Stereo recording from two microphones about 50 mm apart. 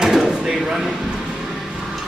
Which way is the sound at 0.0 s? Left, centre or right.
Centre.